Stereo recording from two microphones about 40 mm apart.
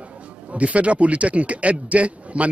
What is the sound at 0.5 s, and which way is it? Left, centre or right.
A man's voice, right.